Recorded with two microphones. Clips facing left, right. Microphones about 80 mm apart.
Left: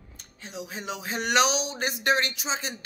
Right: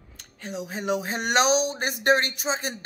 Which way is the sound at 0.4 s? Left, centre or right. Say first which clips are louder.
Right 5 dB; right.